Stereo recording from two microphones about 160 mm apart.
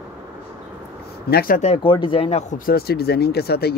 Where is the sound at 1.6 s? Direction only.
35° left (ahead or behind).